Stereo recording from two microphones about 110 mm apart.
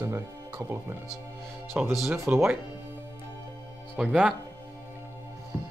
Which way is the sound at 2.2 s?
25° right (ahead or behind).